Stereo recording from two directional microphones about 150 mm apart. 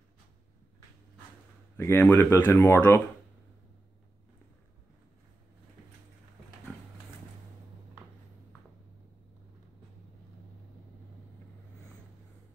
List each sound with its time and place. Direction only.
1.8 s speech: 15° left (ahead or behind)